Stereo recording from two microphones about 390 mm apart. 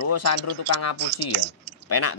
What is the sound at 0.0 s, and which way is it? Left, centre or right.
Speech, left.